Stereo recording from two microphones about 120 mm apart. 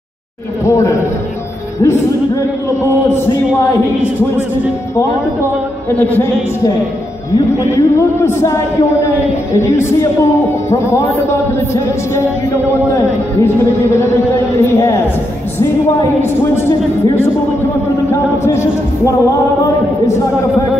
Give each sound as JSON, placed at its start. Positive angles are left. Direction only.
{"t": 0.7, "sound": "speech", "side_deg": 25}
{"t": 2.8, "sound": "speech", "side_deg": 20}
{"t": 4.9, "sound": "a man's voice", "side_deg": 20}
{"t": 7.7, "sound": "speech", "side_deg": 20}